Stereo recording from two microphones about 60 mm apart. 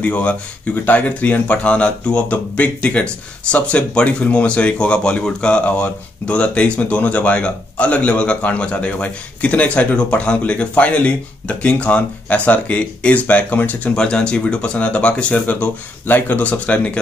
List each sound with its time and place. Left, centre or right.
0.0 s speech: left
13.9 s speech: centre
16.1 s speech: left